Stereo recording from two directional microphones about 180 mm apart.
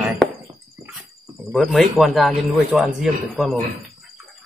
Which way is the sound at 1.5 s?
Centre (ahead or behind).